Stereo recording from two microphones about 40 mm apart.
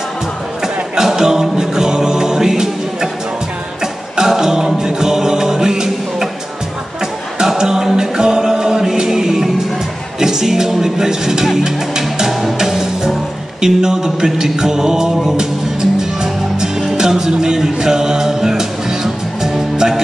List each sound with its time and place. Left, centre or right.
0.9 s music: centre
7.3 s music: centre